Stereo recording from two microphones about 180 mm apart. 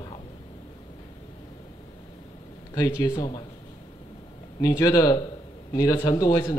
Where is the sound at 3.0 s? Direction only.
20° left (ahead or behind).